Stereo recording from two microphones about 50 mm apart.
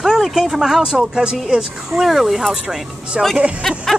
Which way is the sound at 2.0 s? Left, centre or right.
Centre.